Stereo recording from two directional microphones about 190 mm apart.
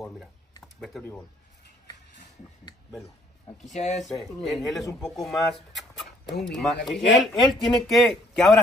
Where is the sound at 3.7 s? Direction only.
35° left (ahead or behind).